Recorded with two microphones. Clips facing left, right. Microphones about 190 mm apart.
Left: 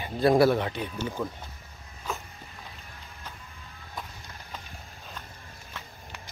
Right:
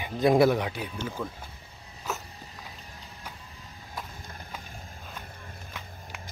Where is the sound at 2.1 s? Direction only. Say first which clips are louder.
Even; 5° right (ahead or behind).